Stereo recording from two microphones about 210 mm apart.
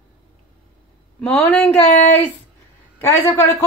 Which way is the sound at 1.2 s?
5° left (ahead or behind).